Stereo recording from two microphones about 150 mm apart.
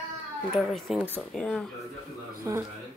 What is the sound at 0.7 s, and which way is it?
Speech, 5° left (ahead or behind).